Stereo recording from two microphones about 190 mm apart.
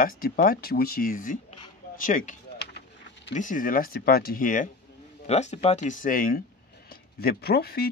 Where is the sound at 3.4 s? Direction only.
45° left (ahead or behind).